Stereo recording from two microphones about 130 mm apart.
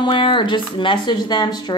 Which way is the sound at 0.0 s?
40° left (ahead or behind).